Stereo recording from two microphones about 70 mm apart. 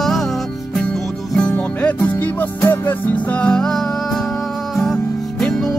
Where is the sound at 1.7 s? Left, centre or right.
Left.